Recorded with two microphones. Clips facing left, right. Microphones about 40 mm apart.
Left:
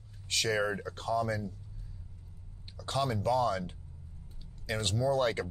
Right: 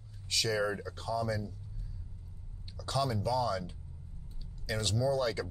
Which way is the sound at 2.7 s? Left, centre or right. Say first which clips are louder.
Left 1 dB; left.